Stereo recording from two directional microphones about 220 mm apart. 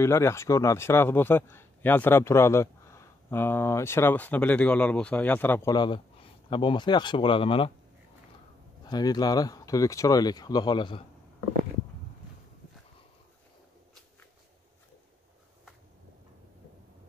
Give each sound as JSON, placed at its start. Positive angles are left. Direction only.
{"t": 0.0, "sound": "a man's voice", "side_deg": 10}
{"t": 8.8, "sound": "a man's voice", "side_deg": 20}